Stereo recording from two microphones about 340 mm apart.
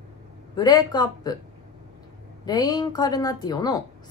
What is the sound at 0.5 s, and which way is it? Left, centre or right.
Speech, centre.